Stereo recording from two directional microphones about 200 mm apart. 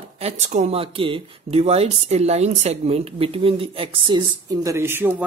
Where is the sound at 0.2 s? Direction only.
35° right (ahead or behind).